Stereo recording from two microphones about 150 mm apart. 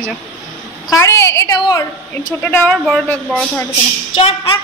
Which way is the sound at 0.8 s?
20° left (ahead or behind).